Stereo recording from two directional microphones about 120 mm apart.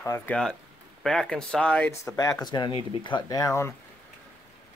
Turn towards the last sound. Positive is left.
turn(degrees=25)  # may be behind; listen again after turning